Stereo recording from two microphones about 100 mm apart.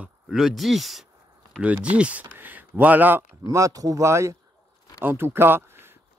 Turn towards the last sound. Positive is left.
turn(degrees=-25)  # may be behind; listen again after turning